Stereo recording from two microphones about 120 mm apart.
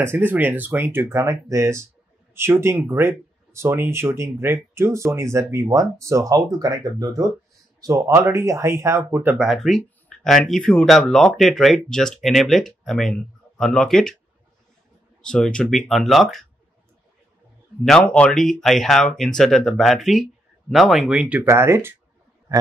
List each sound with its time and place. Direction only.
0.0 s speech: 15° right (ahead or behind)
9.4 s speech: centre (ahead or behind)
15.2 s speech: 5° left (ahead or behind)
17.8 s speech: 10° left (ahead or behind); by 21.5 s 10° right (ahead or behind)
21.5 s speech: 20° right (ahead or behind)